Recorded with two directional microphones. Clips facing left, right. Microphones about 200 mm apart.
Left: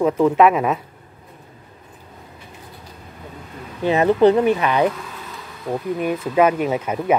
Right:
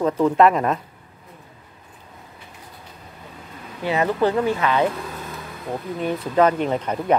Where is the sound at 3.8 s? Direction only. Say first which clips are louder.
Left 6 dB; 20° left (ahead or behind).